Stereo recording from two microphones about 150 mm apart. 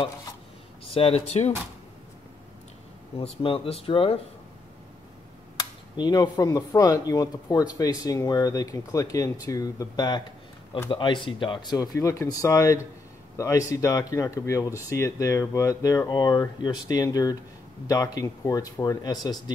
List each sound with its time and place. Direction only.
0.9 s speech: 40° left (ahead or behind)
3.2 s speech: 40° left (ahead or behind)
5.6 s speech: 25° left (ahead or behind)